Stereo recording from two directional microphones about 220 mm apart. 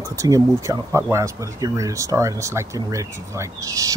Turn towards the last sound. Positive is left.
turn(degrees=-15)  # may be behind; listen again after turning